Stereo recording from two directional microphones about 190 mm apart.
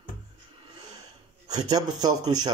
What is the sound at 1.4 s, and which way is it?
Speech, 20° right (ahead or behind).